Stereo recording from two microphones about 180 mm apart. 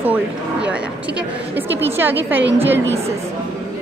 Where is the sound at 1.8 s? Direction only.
10° right (ahead or behind).